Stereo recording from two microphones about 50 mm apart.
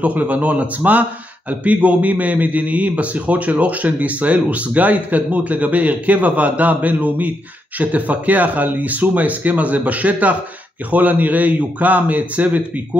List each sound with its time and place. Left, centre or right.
0.0 s a man's voice: right